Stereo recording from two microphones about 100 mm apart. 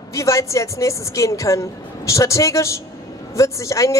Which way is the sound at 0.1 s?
30° left (ahead or behind).